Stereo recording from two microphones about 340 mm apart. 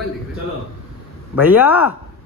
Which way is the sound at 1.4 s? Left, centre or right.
Centre.